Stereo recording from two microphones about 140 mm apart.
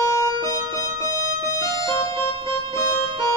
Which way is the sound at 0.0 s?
20° left (ahead or behind).